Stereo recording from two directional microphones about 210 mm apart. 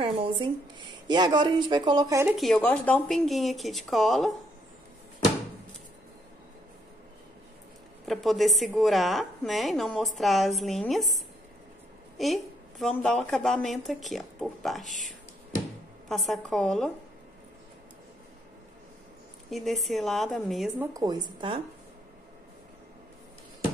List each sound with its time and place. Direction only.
0.0 s speech: 25° right (ahead or behind)
2.3 s a woman's voice: centre (ahead or behind)
8.0 s a woman's voice: centre (ahead or behind)
12.2 s a woman's voice: centre (ahead or behind)
19.5 s a woman's voice: centre (ahead or behind)
20.8 s speech: 15° right (ahead or behind)